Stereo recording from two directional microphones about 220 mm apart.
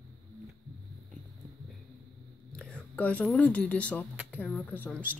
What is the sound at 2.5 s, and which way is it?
A woman's voice, 5° left (ahead or behind).